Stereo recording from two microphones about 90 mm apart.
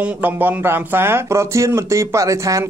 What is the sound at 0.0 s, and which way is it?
Speech, 20° right (ahead or behind).